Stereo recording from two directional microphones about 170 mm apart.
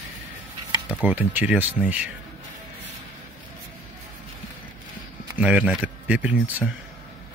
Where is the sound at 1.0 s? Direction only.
10° right (ahead or behind).